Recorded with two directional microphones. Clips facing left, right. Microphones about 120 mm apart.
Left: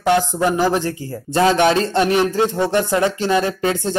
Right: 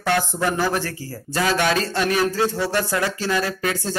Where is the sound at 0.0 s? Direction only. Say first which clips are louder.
Left 5 dB; 20° left (ahead or behind).